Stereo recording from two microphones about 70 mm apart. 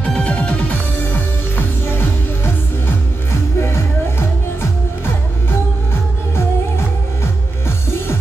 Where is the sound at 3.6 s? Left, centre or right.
Left.